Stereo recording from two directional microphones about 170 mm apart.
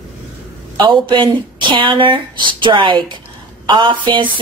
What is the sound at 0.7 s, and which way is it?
Speech, 30° right (ahead or behind).